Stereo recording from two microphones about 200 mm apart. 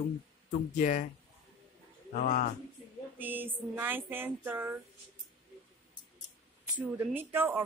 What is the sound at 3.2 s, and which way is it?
Speech, 10° right (ahead or behind).